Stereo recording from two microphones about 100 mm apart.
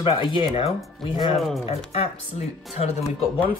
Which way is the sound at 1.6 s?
80° left.